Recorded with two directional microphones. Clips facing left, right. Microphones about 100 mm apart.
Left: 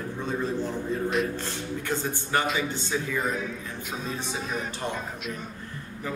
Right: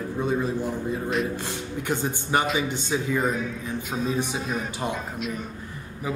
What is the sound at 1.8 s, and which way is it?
Speech, 15° right (ahead or behind).